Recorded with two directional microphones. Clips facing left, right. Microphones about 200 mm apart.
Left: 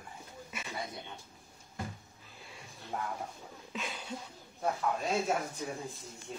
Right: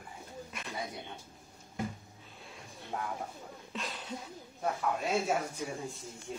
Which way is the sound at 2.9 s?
5° left (ahead or behind).